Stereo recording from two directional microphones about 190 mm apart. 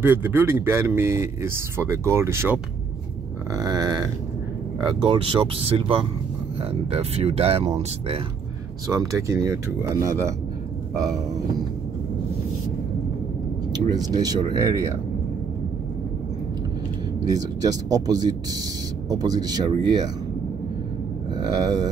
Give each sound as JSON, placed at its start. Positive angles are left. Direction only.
{"t": 0.0, "sound": "speech", "side_deg": -10}
{"t": 8.8, "sound": "speech", "side_deg": -20}
{"t": 13.7, "sound": "speech", "side_deg": -20}
{"t": 17.3, "sound": "speech", "side_deg": -20}
{"t": 21.4, "sound": "speech", "side_deg": -20}